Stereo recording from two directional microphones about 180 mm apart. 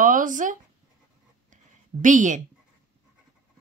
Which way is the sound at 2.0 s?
45° right (ahead or behind).